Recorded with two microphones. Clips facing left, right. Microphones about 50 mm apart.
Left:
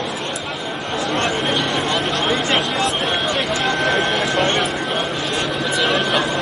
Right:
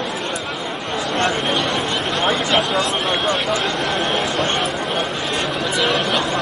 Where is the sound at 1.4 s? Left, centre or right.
Centre.